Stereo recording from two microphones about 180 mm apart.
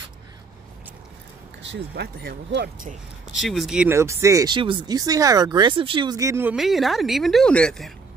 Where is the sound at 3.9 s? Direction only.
15° right (ahead or behind).